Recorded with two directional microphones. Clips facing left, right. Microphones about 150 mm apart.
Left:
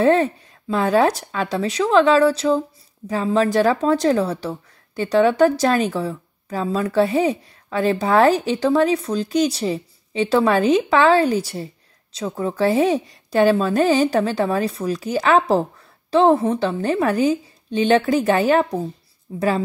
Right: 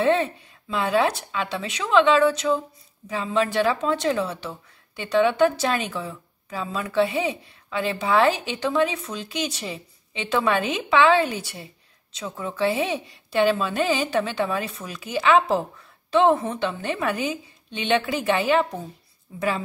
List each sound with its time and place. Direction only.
0.0 s speech: 40° left (ahead or behind)